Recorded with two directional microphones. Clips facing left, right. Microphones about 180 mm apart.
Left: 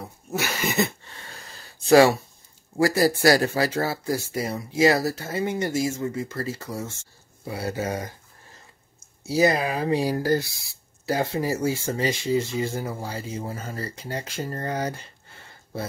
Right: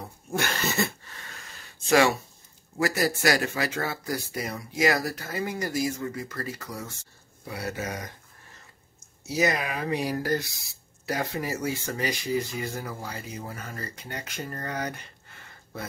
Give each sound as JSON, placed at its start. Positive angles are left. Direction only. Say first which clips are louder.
{"t": 0.0, "sound": "a sound", "louder": "left 1 dB", "side_deg": 5}
{"t": 1.9, "sound": "speech", "louder": "left 6 dB", "side_deg": 35}
{"t": 9.2, "sound": "speech", "louder": "left 5 dB", "side_deg": 30}